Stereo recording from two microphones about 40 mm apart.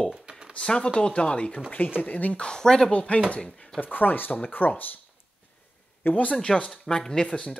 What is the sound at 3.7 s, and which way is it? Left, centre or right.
Speech, left.